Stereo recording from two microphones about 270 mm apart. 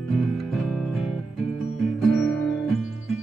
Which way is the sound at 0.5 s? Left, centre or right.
Centre.